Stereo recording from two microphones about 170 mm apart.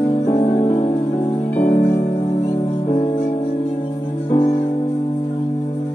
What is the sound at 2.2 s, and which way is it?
Music, 35° left (ahead or behind).